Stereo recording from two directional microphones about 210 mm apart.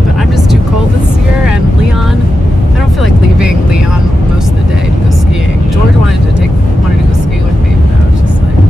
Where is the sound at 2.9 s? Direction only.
5° right (ahead or behind).